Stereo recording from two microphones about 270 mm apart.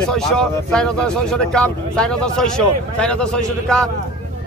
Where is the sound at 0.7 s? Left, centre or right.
Centre.